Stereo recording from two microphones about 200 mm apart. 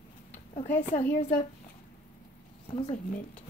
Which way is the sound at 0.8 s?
35° left (ahead or behind).